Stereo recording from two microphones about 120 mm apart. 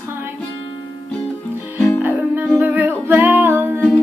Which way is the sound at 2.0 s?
15° right (ahead or behind).